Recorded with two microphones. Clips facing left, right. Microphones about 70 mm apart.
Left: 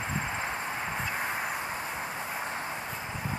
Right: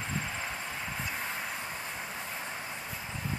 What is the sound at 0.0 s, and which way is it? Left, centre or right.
Vehicle, left.